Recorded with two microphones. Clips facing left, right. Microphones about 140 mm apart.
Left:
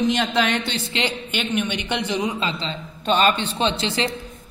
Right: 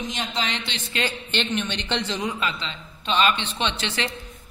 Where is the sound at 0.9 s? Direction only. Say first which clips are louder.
Left 1 dB; 25° left (ahead or behind).